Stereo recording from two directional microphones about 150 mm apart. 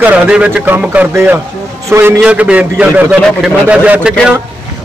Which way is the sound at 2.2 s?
10° right (ahead or behind).